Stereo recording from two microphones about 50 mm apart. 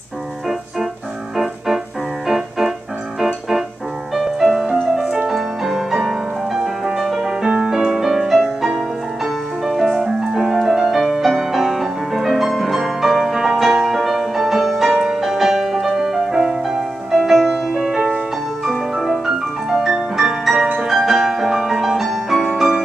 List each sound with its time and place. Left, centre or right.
1.3 s keyboard: centre
4.1 s music: centre
5.0 s music: centre
5.3 s music: centre
20.5 s music: right
20.8 s music: centre